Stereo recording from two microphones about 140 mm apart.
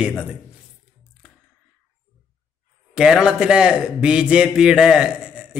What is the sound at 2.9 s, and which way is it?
A man's voice, 5° right (ahead or behind).